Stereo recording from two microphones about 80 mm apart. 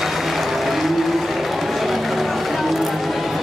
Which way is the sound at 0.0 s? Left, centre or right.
Centre.